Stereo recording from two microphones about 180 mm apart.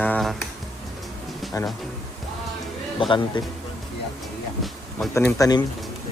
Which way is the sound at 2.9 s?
25° left (ahead or behind).